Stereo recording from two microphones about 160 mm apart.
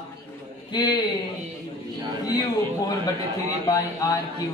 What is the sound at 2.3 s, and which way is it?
A man's voice, 25° left (ahead or behind).